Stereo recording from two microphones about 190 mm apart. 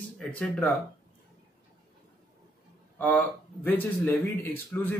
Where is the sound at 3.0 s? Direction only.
10° left (ahead or behind).